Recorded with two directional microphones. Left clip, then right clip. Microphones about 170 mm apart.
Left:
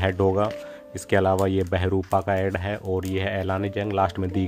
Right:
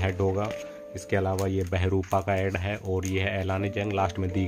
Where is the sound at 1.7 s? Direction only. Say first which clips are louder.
Left 4 dB; 25° left (ahead or behind).